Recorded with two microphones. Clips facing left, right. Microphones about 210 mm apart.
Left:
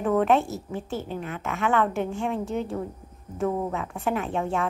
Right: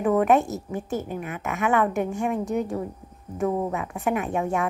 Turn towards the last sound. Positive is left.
turn(degrees=-10)  # may be behind; listen again after turning